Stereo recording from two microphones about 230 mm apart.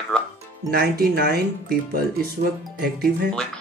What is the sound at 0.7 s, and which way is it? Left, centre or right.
Speech, right.